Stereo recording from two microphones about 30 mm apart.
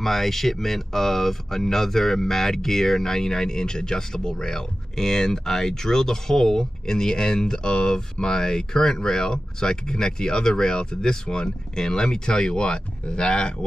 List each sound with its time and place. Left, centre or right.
0.0 s speech: centre; by 13.7 s left